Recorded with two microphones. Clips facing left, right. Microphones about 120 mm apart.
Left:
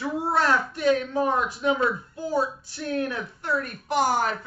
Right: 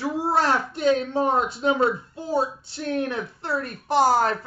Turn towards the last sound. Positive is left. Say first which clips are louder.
# right 4 dB
turn(degrees=-35)  # may be behind; listen again after turning